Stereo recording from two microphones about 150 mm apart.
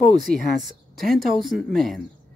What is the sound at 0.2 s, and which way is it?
Speech, centre (ahead or behind).